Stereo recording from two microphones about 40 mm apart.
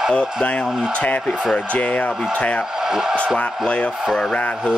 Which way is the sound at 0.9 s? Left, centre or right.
Left.